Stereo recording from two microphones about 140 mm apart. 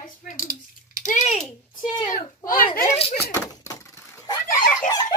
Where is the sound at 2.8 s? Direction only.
50° left (ahead or behind).